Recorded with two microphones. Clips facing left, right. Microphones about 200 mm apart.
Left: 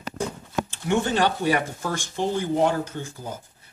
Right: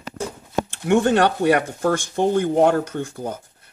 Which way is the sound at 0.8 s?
60° right (ahead or behind).